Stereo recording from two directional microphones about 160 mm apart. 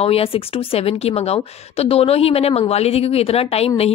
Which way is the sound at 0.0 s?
35° left (ahead or behind).